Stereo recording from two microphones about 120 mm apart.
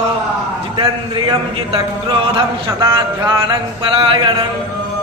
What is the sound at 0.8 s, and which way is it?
A man's voice, 40° right (ahead or behind).